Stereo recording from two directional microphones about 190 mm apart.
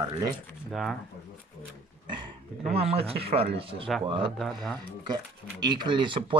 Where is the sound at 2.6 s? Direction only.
30° right (ahead or behind).